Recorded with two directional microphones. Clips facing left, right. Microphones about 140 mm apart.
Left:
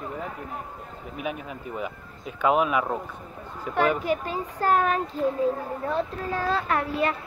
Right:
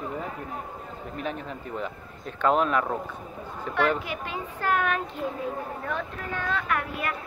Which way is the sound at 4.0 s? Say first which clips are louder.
Left 6 dB; 40° left (ahead or behind).